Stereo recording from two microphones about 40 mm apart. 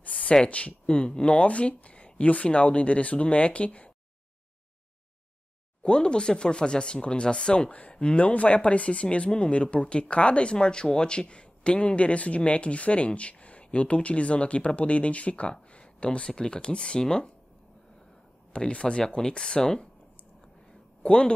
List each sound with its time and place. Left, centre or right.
0.2 s speech: left
5.8 s speech: left
18.7 s speech: left
21.0 s speech: left